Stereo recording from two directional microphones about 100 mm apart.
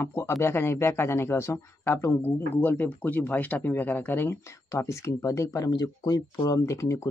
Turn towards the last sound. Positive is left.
turn(degrees=30)  # may be behind; listen again after turning